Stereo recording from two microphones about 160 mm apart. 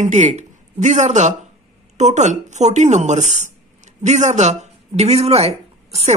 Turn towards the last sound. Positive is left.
turn(degrees=-40)  # may be behind; listen again after turning